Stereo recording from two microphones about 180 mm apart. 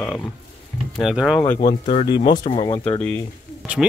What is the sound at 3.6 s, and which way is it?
Speech, centre (ahead or behind).